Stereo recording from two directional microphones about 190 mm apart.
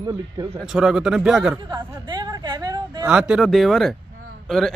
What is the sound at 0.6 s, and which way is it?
Speech, centre (ahead or behind).